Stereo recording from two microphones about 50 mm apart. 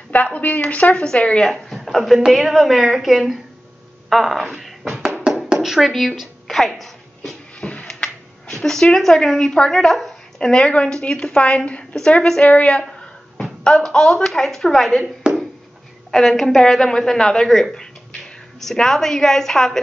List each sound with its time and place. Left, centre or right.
0.1 s a woman's voice: left
1.4 s speech: centre
5.5 s music: centre
7.8 s a sound: centre
9.8 s speech: centre
10.4 s a woman's voice: centre
15.2 s a sound: centre
16.1 s a woman's voice: centre
18.6 s a woman's voice: centre